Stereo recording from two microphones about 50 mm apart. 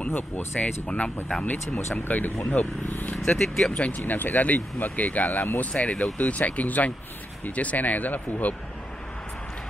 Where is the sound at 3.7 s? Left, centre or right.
Left.